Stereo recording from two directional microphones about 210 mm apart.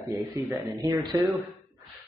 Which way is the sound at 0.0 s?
15° right (ahead or behind).